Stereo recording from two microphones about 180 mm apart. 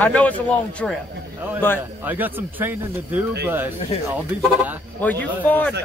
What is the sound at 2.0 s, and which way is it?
Speech, 10° right (ahead or behind).